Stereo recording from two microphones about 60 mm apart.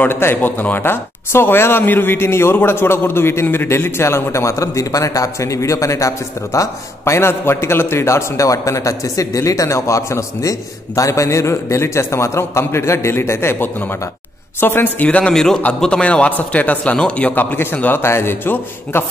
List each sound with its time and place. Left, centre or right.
0.0 s a man's voice: left
7.2 s a man's voice: left
15.0 s speech: centre
15.3 s a man's voice: centre
17.4 s speech: left
18.0 s speech: left